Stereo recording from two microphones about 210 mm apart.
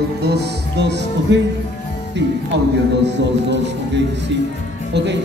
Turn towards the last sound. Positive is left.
turn(degrees=-55)  # may be behind; listen again after turning